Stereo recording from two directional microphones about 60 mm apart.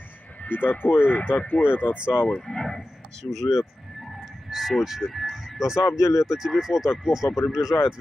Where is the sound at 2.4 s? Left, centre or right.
Centre.